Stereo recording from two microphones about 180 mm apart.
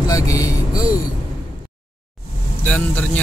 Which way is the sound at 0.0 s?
20° left (ahead or behind).